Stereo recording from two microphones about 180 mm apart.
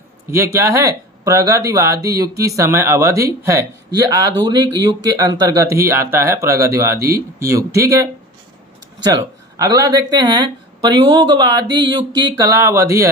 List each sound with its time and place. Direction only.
0.3 s speech: 15° right (ahead or behind)
9.0 s speech: 20° right (ahead or behind)